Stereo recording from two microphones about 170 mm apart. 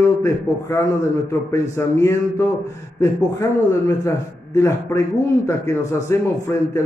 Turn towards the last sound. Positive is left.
turn(degrees=15)  # may be behind; listen again after turning